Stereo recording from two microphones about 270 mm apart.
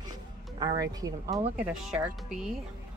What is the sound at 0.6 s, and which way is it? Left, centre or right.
Speech, centre.